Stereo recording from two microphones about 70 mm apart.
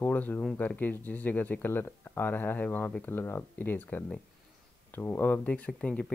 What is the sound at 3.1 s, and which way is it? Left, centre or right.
Speech, left.